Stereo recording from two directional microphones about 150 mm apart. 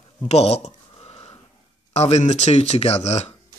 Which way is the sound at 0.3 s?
45° left (ahead or behind).